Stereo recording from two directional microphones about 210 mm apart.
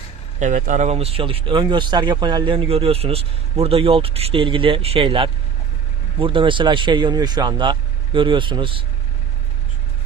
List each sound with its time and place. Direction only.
0.4 s speech: 35° right (ahead or behind)